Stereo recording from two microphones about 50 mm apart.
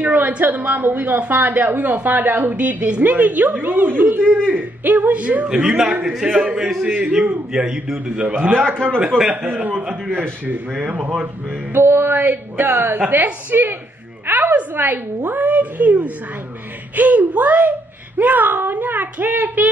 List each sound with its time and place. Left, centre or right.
0.0 s a sound: right
0.4 s a man's voice: right
6.9 s speech: right
7.5 s a man's voice: centre
8.3 s speech: right
10.8 s a man's voice: right
11.7 s a sound: right
13.1 s speech: right